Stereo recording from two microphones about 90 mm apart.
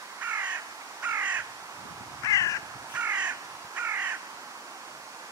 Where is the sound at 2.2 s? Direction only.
40° left (ahead or behind).